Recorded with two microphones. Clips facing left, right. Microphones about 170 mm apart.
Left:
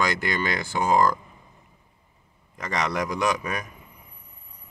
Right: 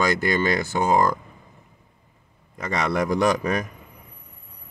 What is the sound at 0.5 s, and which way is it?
Speech, 45° right (ahead or behind).